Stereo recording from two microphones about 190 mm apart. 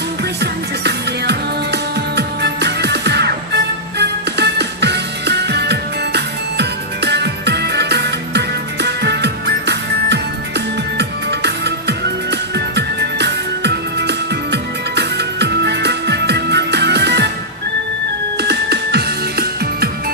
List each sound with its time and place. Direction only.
0.4 s music: 60° right (ahead or behind)
18.4 s music: 60° right (ahead or behind)